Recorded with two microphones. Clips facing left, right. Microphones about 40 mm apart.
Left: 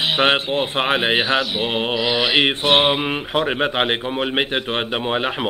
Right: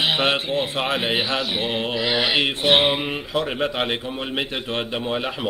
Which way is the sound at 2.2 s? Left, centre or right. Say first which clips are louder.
Left 4 dB; left.